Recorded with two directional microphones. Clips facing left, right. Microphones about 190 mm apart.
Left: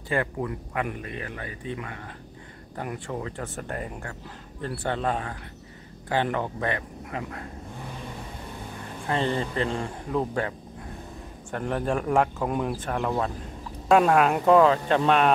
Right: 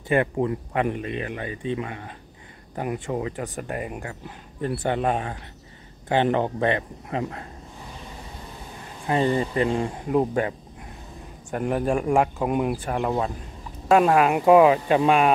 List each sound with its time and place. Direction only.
0.1 s speech: 25° right (ahead or behind)
9.0 s speech: 10° right (ahead or behind)
11.5 s speech: 10° right (ahead or behind)